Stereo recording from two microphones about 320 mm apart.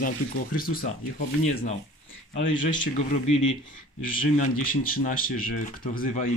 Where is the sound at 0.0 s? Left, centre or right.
Left.